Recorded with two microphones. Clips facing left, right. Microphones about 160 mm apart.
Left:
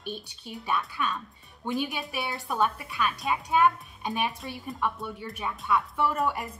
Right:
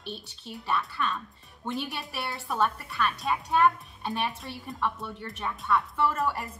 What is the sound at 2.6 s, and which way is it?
A woman's voice, 15° left (ahead or behind).